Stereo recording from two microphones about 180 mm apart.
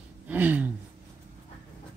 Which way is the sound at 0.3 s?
10° right (ahead or behind).